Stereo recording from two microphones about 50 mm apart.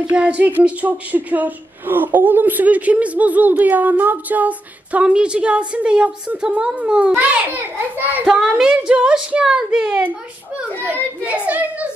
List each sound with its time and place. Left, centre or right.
0.1 s a woman's voice: right
8.3 s speech: centre
11.2 s speech: right